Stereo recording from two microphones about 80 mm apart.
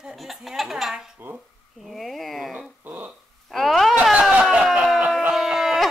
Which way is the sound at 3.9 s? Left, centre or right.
Centre.